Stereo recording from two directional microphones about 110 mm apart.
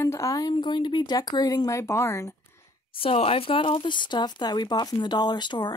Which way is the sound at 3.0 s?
60° left (ahead or behind).